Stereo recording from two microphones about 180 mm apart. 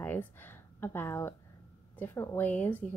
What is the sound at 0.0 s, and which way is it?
Speech, 10° left (ahead or behind).